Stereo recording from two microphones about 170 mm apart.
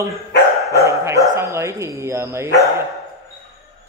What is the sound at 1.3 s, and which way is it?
Speech, 15° right (ahead or behind).